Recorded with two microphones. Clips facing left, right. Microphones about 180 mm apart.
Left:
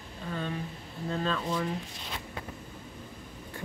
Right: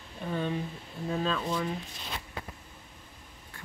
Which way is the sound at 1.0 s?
5° right (ahead or behind).